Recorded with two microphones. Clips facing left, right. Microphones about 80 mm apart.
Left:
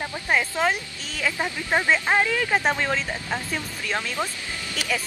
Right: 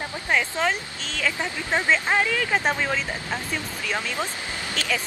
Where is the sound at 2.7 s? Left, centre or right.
Centre.